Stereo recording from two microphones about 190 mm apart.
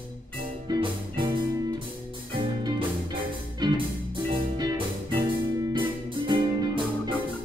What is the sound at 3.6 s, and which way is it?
Music, 25° right (ahead or behind).